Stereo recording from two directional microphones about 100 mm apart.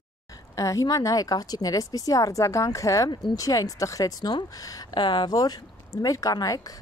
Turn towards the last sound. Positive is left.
turn(degrees=40)  # may be behind; listen again after turning